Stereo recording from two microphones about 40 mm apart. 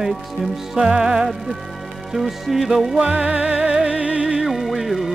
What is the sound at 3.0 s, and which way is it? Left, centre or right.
Music, right.